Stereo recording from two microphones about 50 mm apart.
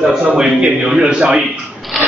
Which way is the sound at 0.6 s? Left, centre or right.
Centre.